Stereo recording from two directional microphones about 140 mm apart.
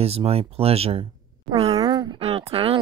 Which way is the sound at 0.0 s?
45° right (ahead or behind).